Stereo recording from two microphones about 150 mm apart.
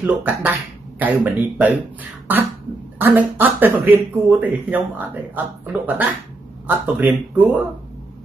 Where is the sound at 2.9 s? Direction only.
10° right (ahead or behind).